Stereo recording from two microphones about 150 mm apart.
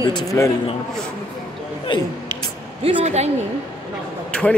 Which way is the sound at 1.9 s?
35° left (ahead or behind).